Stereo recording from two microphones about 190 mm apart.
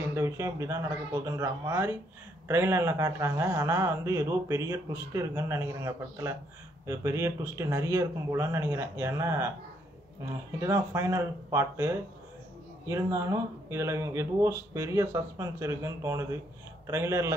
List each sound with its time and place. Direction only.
0.1 s a man's voice: 15° right (ahead or behind)